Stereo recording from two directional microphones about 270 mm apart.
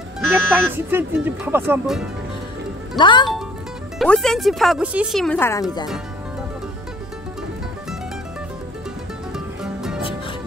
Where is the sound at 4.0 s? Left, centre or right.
Centre.